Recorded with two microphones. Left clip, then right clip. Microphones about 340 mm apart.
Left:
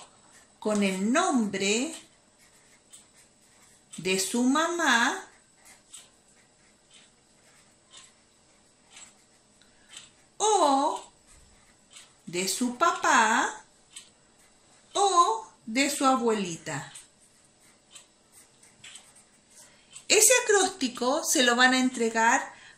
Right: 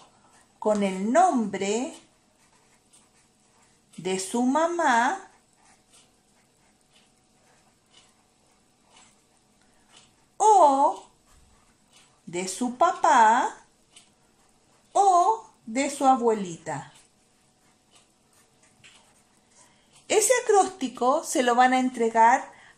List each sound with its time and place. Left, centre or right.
0.6 s speech: centre
4.0 s speech: right
10.3 s a sound: centre
12.3 s speech: centre
14.9 s a sound: centre
15.7 s speech: centre
20.1 s speech: right